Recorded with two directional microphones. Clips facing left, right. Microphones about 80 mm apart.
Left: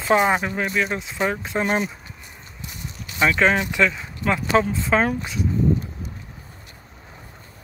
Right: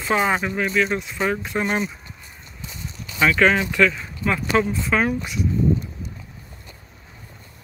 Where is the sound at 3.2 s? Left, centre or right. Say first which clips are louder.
Right 1 dB; left.